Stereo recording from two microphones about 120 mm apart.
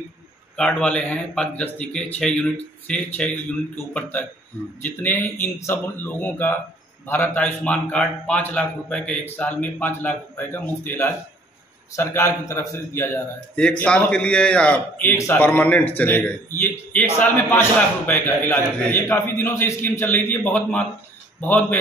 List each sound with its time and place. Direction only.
0.6 s a man's voice: 5° left (ahead or behind)
13.6 s a man's voice: 10° left (ahead or behind)